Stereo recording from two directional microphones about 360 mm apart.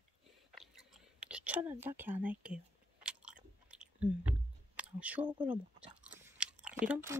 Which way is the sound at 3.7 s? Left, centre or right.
Centre.